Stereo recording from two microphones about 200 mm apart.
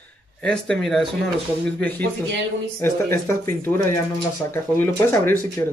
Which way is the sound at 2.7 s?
10° left (ahead or behind).